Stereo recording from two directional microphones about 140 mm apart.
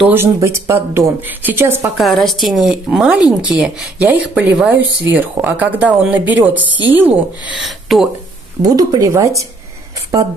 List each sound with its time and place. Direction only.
0.1 s a woman's voice: 20° right (ahead or behind)
2.0 s a woman's voice: centre (ahead or behind)
7.5 s speech: centre (ahead or behind)
8.6 s speech: 25° right (ahead or behind)